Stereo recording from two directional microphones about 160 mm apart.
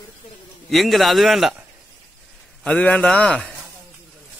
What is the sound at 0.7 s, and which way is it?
Speech, centre (ahead or behind).